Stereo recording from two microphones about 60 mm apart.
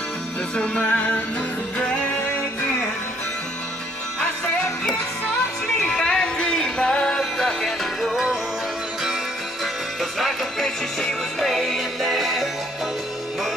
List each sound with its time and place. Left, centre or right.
0.6 s music: left
5.8 s music: centre
8.0 s music: centre
10.1 s music: centre